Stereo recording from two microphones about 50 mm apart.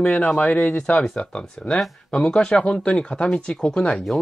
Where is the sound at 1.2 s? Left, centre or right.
Left.